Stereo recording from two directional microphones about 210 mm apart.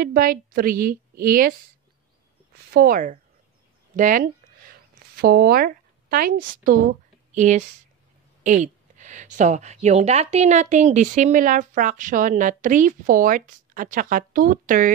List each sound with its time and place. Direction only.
0.0 s a woman's voice: 45° right (ahead or behind)
2.5 s speech: 45° right (ahead or behind)
3.9 s a sound: 40° right (ahead or behind)
7.3 s a woman's voice: 35° right (ahead or behind)